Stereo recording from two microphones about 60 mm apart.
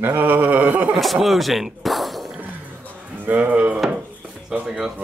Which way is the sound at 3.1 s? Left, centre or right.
Right.